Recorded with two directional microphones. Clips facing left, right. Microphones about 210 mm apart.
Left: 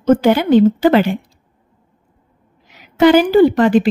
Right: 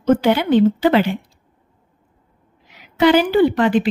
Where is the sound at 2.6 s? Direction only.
45° left (ahead or behind).